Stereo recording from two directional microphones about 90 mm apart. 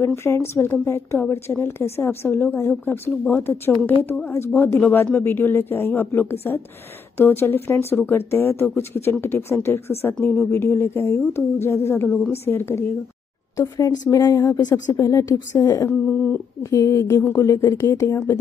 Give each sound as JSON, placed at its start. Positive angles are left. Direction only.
{"t": 0.0, "sound": "speech", "side_deg": 30}
{"t": 13.6, "sound": "speech", "side_deg": 40}
{"t": 16.1, "sound": "a sound", "side_deg": 15}
{"t": 16.7, "sound": "speech", "side_deg": 35}